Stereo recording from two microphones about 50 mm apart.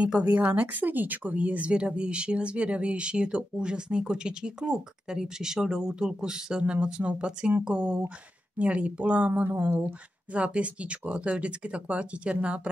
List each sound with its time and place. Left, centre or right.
0.2 s speech: right
10.3 s speech: right